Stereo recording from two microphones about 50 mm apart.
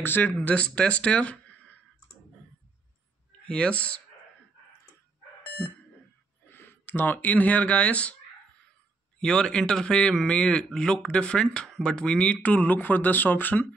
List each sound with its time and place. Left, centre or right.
0.0 s speech: left
0.4 s speech: left
3.4 s speech: left
5.6 s speech: left
6.5 s speech: left
9.2 s speech: centre; by 13.7 s left